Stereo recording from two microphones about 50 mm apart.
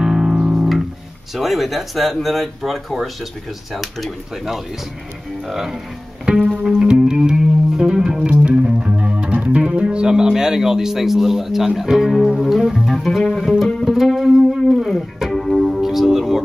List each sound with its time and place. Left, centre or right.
0.0 s music: centre
1.3 s speech: centre
6.2 s music: centre
6.6 s speech: centre
13.8 s speech: centre
14.7 s music: centre